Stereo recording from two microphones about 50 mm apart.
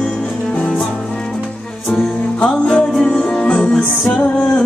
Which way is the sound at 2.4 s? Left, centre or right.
Left.